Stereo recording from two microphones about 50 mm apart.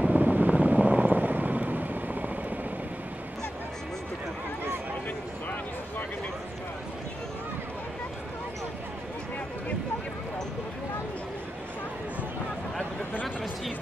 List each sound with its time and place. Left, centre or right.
0.1 s vehicle: right